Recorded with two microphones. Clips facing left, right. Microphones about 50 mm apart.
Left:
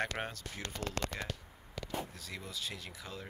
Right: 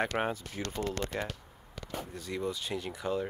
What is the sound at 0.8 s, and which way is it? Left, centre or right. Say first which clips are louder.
Speech: right 1 dB; left.